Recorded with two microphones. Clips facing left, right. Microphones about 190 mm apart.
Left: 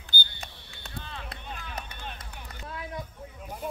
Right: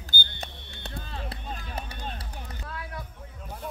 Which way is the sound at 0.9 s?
40° right (ahead or behind).